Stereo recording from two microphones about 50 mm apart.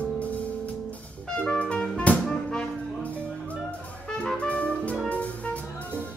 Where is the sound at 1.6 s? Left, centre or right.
Left.